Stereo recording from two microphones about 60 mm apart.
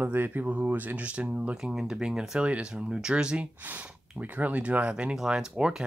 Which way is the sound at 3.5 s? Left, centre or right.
Right.